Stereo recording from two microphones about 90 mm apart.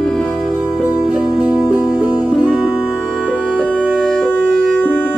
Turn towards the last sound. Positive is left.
turn(degrees=10)  # may be behind; listen again after turning